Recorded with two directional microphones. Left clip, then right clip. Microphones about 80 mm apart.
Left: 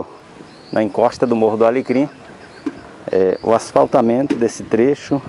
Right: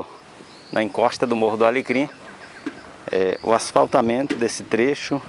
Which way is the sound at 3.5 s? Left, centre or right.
Centre.